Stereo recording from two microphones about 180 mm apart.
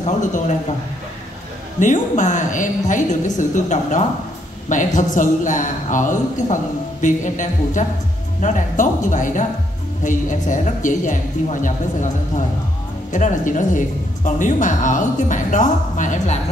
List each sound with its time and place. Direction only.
0.0 s speech: 45° left (ahead or behind)
1.8 s speech: 45° left (ahead or behind)